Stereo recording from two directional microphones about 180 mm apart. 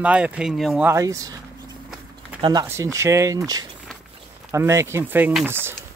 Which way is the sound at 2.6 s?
15° right (ahead or behind).